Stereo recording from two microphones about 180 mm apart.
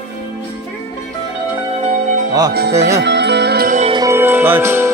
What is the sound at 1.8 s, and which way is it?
Music, 40° right (ahead or behind).